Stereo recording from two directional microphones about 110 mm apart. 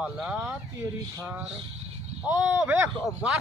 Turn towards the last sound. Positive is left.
turn(degrees=-15)  # may be behind; listen again after turning